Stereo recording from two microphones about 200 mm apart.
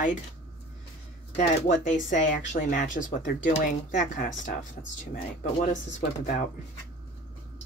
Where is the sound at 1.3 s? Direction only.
40° left (ahead or behind).